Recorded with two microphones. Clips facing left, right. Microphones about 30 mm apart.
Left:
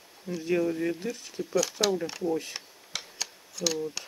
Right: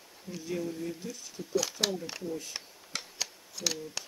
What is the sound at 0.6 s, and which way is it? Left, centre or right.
Speech, left.